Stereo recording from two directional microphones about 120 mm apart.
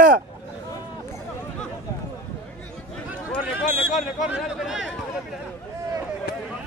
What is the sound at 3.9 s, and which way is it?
Speech, centre (ahead or behind).